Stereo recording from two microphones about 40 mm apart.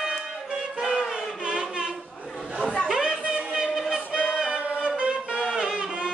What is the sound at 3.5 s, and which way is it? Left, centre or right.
Music, centre.